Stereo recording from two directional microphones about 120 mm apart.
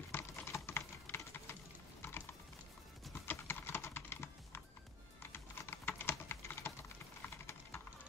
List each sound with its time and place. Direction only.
0.1 s typing: 20° left (ahead or behind)
3.3 s typing: 20° left (ahead or behind)